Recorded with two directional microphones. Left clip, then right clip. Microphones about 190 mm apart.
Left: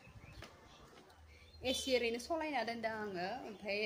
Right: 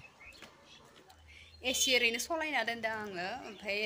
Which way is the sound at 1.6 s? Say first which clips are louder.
Right 6 dB; centre (ahead or behind).